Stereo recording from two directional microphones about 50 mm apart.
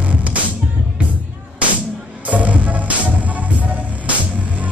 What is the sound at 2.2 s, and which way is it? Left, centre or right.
Music, right.